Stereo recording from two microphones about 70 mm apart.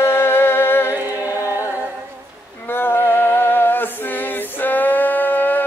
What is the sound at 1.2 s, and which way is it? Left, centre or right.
Music, left.